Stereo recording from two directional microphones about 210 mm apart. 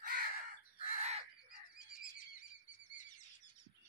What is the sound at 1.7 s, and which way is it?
Bird, 40° left (ahead or behind).